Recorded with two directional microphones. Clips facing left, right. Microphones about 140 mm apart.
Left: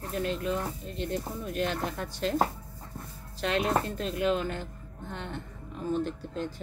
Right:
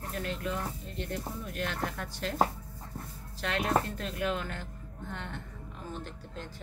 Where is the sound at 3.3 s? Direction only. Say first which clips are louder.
Left 2 dB; 20° left (ahead or behind).